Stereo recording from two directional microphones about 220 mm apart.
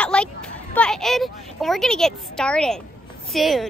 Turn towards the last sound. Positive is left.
turn(degrees=0)  # may be behind; listen again after turning